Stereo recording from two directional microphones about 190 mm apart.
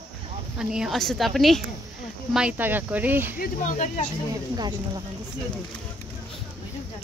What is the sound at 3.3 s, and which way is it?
Speech, 45° left (ahead or behind).